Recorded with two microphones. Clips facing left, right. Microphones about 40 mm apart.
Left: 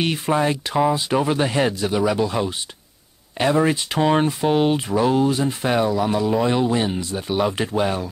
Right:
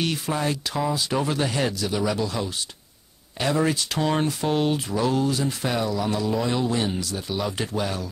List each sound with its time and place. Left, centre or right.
0.0 s speech: left
3.3 s speech: left